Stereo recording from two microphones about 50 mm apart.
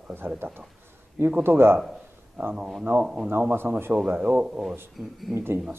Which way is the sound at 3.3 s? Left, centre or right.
Right.